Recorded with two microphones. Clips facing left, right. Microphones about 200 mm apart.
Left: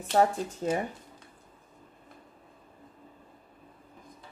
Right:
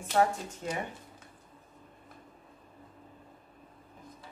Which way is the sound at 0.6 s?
30° left (ahead or behind).